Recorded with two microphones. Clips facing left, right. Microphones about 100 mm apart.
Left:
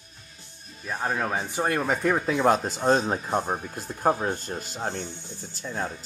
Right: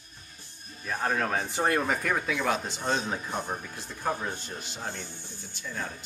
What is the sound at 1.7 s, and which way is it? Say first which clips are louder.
Speech: left 3 dB; 25° left (ahead or behind).